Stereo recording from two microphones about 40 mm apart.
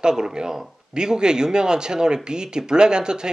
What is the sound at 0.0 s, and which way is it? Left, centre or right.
Speech, centre.